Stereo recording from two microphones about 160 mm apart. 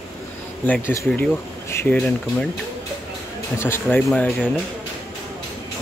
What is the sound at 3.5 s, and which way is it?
Speech, 15° left (ahead or behind).